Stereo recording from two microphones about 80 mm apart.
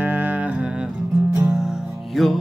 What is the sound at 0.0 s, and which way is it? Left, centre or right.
Music, right.